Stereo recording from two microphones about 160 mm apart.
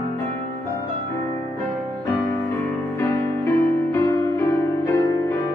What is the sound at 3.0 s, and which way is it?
Music, 15° left (ahead or behind).